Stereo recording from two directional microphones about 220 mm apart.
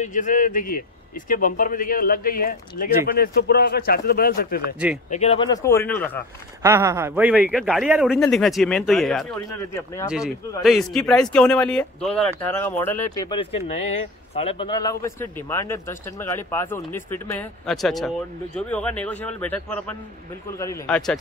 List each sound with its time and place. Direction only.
0.0 s a man's voice: 35° left (ahead or behind)
5.1 s speech: 30° left (ahead or behind)
5.5 s speech: 15° left (ahead or behind)
6.6 s a man's voice: 15° right (ahead or behind); by 21.0 s 15° left (ahead or behind)